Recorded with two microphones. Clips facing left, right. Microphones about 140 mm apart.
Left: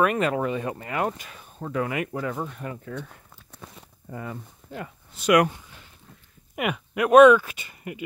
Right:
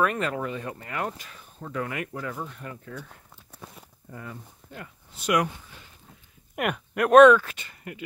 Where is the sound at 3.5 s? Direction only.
5° right (ahead or behind).